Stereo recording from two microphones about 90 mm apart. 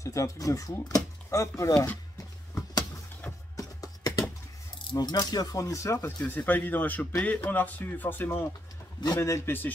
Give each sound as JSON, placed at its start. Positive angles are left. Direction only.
{"t": 0.0, "sound": "speech", "side_deg": 40}
{"t": 3.5, "sound": "a sound", "side_deg": 40}
{"t": 4.9, "sound": "speech", "side_deg": 45}
{"t": 6.2, "sound": "speech", "side_deg": 20}